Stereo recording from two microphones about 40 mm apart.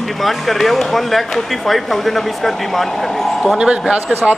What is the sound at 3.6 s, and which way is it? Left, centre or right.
Speech, right.